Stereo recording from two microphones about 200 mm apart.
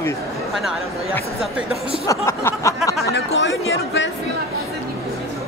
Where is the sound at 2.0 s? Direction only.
15° left (ahead or behind).